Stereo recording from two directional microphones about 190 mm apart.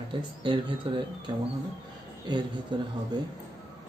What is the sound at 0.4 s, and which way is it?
Speech, 25° right (ahead or behind).